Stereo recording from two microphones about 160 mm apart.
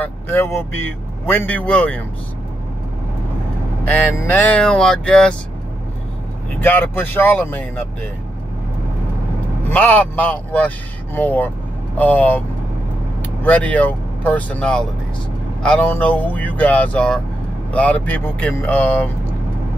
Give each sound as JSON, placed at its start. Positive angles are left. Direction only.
{"t": 0.0, "sound": "speech", "side_deg": 15}
{"t": 3.8, "sound": "speech", "side_deg": 10}
{"t": 6.6, "sound": "speech", "side_deg": 15}
{"t": 9.7, "sound": "speech", "side_deg": 10}